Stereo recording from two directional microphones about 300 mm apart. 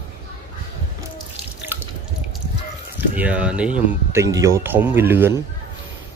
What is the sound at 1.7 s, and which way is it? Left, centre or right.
Drip, centre.